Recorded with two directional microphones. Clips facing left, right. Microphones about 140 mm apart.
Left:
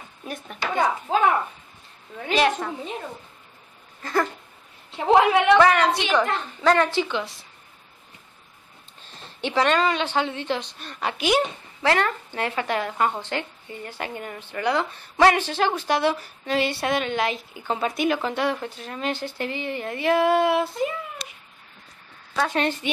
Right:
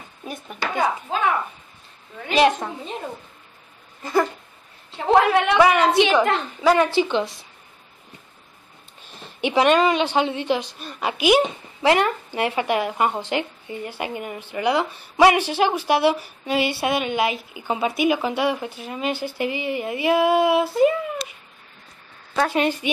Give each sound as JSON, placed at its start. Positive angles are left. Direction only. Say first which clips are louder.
{"t": 0.2, "sound": "speech", "louder": "right 2 dB", "side_deg": -5}
{"t": 2.3, "sound": "a woman's voice", "louder": "right 4 dB", "side_deg": -20}
{"t": 4.0, "sound": "speech", "louder": "right 3 dB", "side_deg": -10}
{"t": 4.9, "sound": "a woman's voice", "louder": "right 1 dB", "side_deg": 15}
{"t": 5.5, "sound": "a woman's voice", "louder": "even", "side_deg": -10}
{"t": 9.1, "sound": "a woman's voice", "louder": "right 4 dB", "side_deg": -15}
{"t": 22.3, "sound": "speech", "louder": "right 3 dB", "side_deg": -5}